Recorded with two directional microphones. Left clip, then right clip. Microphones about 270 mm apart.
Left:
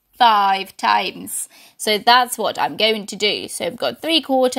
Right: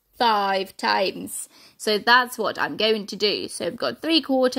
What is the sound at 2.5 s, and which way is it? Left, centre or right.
Speech, left.